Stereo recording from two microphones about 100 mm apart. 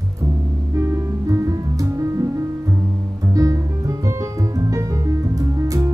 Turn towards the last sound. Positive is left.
turn(degrees=-35)  # may be behind; listen again after turning